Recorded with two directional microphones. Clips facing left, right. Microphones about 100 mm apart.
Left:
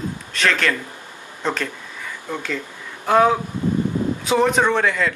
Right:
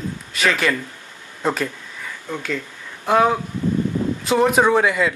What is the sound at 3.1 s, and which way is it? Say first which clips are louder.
A man's voice: left 1 dB; centre (ahead or behind).